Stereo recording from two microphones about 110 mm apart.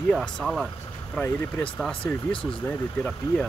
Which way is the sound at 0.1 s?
Centre (ahead or behind).